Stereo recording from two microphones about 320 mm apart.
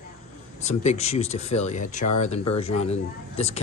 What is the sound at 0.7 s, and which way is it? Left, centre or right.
Speech, left.